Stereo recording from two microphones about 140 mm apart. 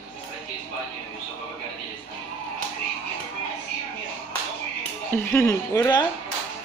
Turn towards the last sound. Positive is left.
turn(degrees=25)  # may be behind; listen again after turning